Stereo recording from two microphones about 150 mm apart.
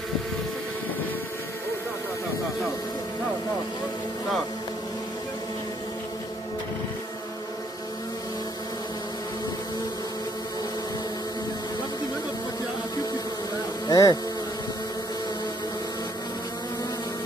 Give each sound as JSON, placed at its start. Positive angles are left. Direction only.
{"t": 13.8, "sound": "insect", "side_deg": 25}